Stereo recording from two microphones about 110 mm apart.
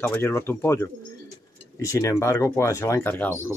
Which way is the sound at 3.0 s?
15° left (ahead or behind).